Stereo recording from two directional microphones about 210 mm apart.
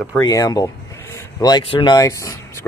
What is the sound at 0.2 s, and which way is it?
Speech, 15° left (ahead or behind).